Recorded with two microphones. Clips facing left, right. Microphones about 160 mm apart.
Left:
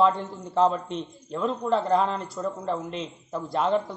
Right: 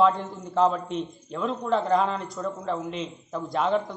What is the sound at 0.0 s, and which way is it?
A man's voice, centre (ahead or behind).